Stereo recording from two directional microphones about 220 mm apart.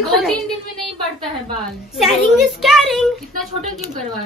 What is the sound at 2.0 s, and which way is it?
Speech, centre (ahead or behind).